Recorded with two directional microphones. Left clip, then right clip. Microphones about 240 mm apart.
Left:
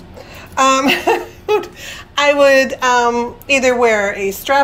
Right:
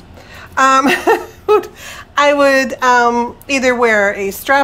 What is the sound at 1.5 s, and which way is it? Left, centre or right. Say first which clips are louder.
Speech: right 4 dB; centre.